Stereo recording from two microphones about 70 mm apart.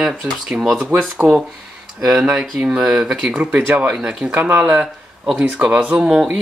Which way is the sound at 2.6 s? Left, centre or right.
Centre.